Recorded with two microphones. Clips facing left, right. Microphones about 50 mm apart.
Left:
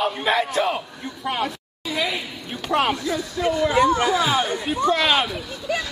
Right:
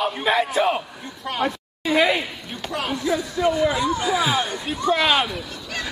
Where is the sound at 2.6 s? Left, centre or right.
Left.